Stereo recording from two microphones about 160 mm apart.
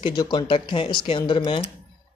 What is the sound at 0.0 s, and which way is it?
Speech, 30° left (ahead or behind).